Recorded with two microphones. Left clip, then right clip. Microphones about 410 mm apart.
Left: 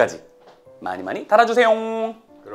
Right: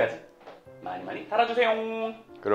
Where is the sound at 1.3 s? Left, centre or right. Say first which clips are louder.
Left 9 dB; left.